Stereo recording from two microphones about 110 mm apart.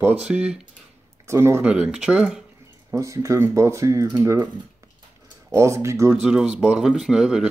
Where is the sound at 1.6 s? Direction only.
10° right (ahead or behind).